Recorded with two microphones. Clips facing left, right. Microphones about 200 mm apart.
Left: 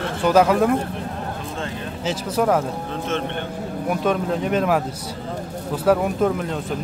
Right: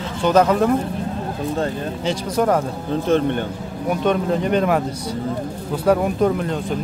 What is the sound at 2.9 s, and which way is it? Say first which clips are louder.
Speech: right 7 dB; 35° right (ahead or behind).